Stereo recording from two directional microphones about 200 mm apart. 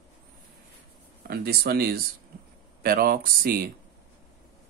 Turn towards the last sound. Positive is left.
turn(degrees=-45)  # may be behind; listen again after turning